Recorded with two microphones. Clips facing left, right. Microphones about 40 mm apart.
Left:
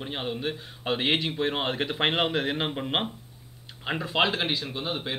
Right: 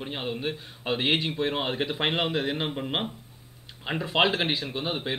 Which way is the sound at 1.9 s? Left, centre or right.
Centre.